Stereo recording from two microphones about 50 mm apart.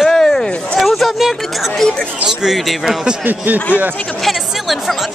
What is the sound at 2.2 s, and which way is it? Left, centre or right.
Speech, centre.